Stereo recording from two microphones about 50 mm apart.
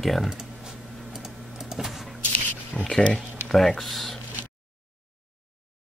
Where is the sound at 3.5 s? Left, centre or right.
Centre.